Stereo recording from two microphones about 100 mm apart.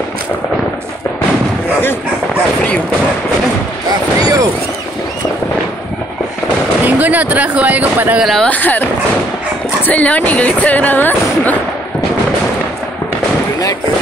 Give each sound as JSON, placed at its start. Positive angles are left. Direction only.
{"t": 4.2, "sound": "a sound", "side_deg": -35}
{"t": 6.8, "sound": "speech", "side_deg": -15}
{"t": 8.2, "sound": "speech", "side_deg": 0}
{"t": 8.5, "sound": "speech", "side_deg": 15}
{"t": 9.8, "sound": "speech", "side_deg": 15}